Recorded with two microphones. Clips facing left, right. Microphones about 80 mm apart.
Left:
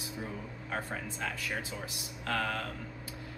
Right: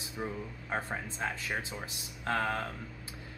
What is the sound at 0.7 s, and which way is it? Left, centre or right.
A man's voice, right.